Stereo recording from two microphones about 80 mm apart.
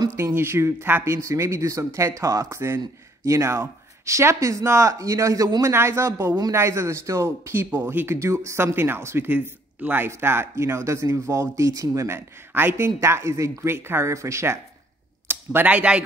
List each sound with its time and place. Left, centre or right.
0.2 s speech: right
8.2 s speech: right
12.5 s speech: right
15.2 s speech: right